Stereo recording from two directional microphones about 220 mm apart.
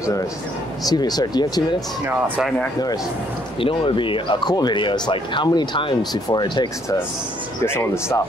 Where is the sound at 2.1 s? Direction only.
5° right (ahead or behind).